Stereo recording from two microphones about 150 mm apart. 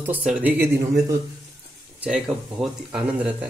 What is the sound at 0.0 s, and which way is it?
Speech, 10° right (ahead or behind).